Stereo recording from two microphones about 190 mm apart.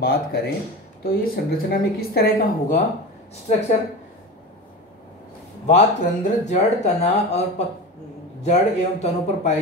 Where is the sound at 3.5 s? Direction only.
40° left (ahead or behind).